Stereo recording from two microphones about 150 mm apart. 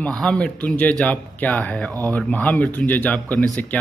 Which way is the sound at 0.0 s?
5° left (ahead or behind).